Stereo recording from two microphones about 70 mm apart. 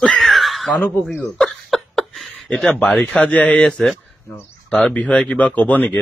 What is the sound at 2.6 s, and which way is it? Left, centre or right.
Speech, centre.